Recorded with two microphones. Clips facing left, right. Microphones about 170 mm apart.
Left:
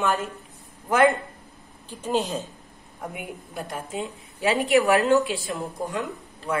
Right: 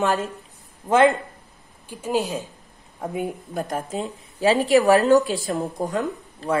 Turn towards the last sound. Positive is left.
turn(degrees=-40)  # may be behind; listen again after turning